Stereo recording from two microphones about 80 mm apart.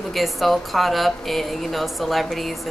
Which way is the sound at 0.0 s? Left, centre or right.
Centre.